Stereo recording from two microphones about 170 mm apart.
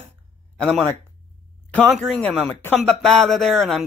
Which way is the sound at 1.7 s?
Centre (ahead or behind).